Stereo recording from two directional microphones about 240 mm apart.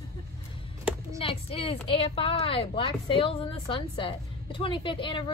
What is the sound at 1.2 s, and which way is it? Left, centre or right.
A woman's voice, left.